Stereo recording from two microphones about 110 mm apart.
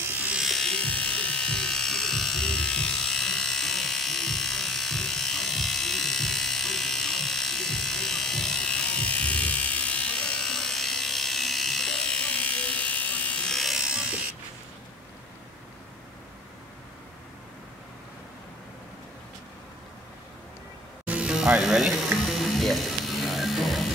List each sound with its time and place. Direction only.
0.4 s electric shaver: centre (ahead or behind)
21.0 s music: 10° right (ahead or behind)